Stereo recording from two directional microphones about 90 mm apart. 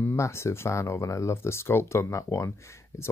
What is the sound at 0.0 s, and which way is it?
Speech, 30° left (ahead or behind).